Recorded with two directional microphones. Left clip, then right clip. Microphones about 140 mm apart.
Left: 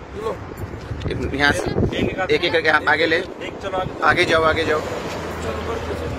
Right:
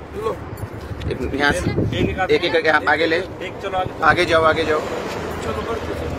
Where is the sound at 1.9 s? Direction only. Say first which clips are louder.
Right 1 dB; 90° right.